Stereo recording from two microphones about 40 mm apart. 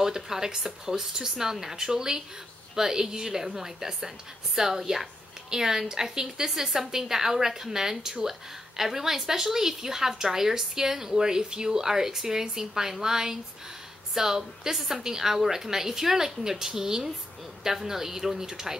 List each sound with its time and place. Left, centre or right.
0.0 s a woman's voice: centre